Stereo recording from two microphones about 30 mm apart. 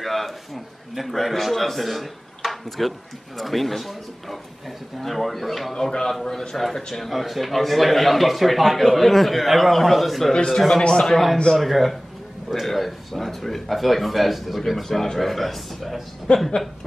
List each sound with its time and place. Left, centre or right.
0.0 s a sound: centre
1.0 s a man's voice: centre
5.8 s a man's voice: left
6.5 s a man's voice: centre
7.1 s a man's voice: centre
10.3 s a man's voice: left
11.5 s a man's voice: centre
16.3 s speech: left